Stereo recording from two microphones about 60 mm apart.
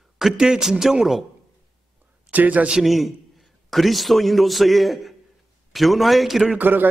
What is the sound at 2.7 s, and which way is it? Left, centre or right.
A man's voice, centre.